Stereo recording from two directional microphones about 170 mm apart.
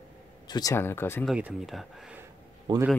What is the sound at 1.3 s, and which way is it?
Speech, 5° right (ahead or behind).